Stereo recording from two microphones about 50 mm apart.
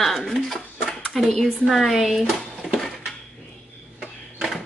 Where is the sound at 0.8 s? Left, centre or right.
Centre.